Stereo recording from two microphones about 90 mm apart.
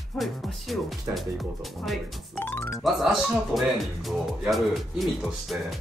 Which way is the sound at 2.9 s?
Centre (ahead or behind).